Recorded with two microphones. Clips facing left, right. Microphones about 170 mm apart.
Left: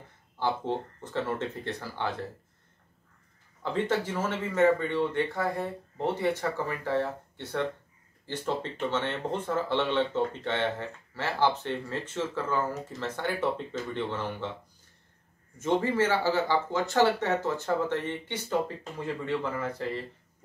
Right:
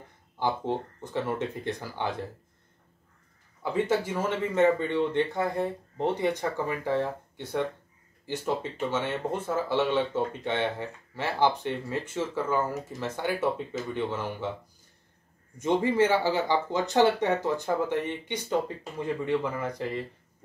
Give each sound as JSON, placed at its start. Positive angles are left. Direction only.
{"t": 0.4, "sound": "speech", "side_deg": -15}
{"t": 3.6, "sound": "speech", "side_deg": -10}
{"t": 15.6, "sound": "speech", "side_deg": -15}